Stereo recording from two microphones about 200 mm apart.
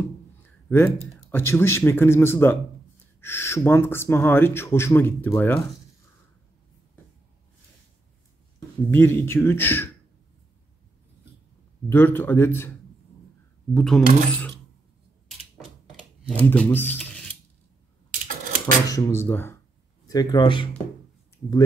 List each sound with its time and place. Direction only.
0.7 s speech: 10° left (ahead or behind)
8.5 s speech: 10° left (ahead or behind)
11.9 s speech: 10° left (ahead or behind)
13.7 s speech: 5° left (ahead or behind)
16.4 s speech: 10° left (ahead or behind)
18.9 s a man's voice: 15° left (ahead or behind)